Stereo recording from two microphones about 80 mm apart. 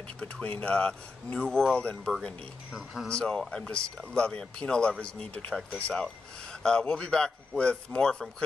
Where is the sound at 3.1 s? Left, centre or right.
Centre.